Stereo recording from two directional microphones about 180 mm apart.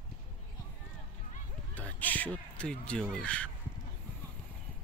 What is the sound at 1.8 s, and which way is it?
Speech, 10° left (ahead or behind).